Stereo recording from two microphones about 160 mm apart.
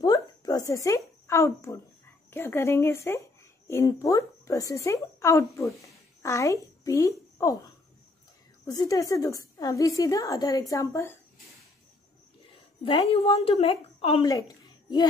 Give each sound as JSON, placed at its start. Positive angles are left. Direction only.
{"t": 0.0, "sound": "a sound", "side_deg": 25}
{"t": 2.3, "sound": "speech", "side_deg": 15}
{"t": 8.6, "sound": "a woman's voice", "side_deg": 20}
{"t": 12.8, "sound": "a woman's voice", "side_deg": 35}